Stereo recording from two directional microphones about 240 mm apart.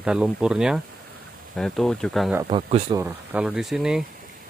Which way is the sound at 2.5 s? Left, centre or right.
Right.